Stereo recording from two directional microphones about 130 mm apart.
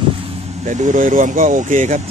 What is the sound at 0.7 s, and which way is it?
Speech, 70° right (ahead or behind).